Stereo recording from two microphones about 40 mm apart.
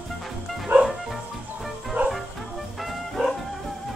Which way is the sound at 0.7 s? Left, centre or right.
Right.